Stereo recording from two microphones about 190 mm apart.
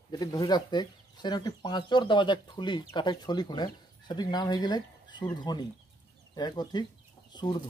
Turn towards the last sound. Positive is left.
turn(degrees=20)  # may be behind; listen again after turning